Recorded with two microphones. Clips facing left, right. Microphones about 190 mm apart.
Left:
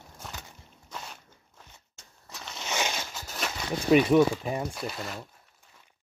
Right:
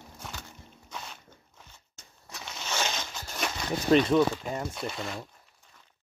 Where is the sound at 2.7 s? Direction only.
10° left (ahead or behind).